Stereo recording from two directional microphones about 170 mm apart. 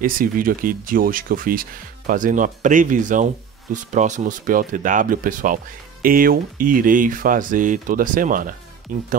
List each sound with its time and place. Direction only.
0.0 s speech: 55° right (ahead or behind)